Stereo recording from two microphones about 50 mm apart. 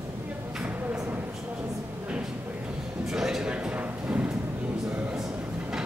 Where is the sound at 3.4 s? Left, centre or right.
Right.